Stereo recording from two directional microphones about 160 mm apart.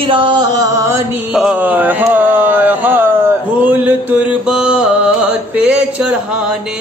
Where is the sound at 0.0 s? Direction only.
30° right (ahead or behind).